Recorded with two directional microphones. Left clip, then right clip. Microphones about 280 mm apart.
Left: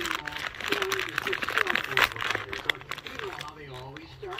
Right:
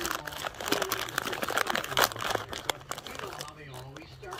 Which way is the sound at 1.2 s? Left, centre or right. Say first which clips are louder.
Left 2 dB; right.